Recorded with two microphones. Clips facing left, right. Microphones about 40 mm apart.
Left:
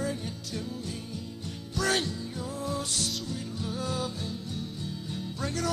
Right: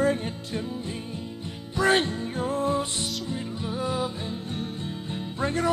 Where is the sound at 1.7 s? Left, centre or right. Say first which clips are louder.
Right 6 dB; right.